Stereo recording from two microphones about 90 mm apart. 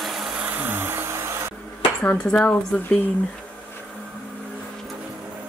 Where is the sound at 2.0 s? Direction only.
20° left (ahead or behind).